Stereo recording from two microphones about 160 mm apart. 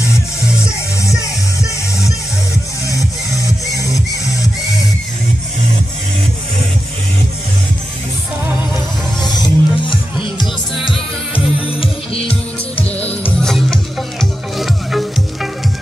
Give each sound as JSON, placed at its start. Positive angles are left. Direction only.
{"t": 1.1, "sound": "music", "side_deg": -5}
{"t": 3.7, "sound": "music", "side_deg": 20}
{"t": 9.2, "sound": "music", "side_deg": 25}
{"t": 12.9, "sound": "music", "side_deg": 10}